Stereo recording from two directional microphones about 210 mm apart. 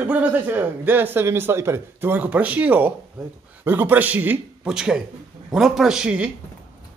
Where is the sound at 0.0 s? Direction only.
5° right (ahead or behind).